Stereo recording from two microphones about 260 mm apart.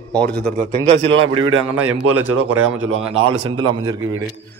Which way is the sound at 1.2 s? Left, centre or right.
Centre.